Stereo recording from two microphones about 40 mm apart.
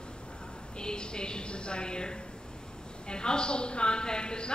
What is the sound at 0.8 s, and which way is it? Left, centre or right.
A man's voice, left.